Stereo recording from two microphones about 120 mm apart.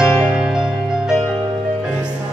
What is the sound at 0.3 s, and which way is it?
Music, 5° right (ahead or behind).